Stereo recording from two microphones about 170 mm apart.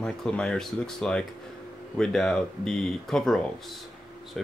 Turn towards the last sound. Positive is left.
turn(degrees=0)  # may be behind; listen again after turning